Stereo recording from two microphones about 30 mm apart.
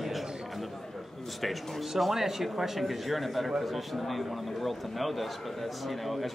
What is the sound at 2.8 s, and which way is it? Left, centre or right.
A man's voice, centre.